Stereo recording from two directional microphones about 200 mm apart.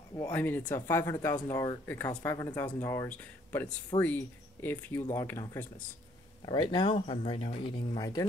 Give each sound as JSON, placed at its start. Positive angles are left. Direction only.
{"t": 0.3, "sound": "speech", "side_deg": 10}